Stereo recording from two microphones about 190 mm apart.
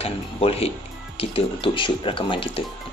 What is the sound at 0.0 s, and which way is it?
Speech, 30° left (ahead or behind).